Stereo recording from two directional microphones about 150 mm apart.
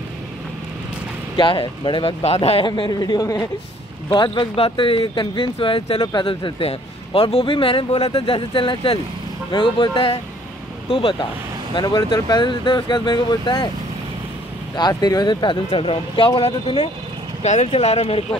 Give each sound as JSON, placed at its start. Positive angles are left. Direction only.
{"t": 1.3, "sound": "speech", "side_deg": 35}
{"t": 14.8, "sound": "speech", "side_deg": 25}